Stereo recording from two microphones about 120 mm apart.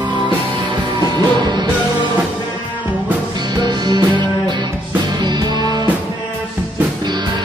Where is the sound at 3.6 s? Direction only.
35° right (ahead or behind).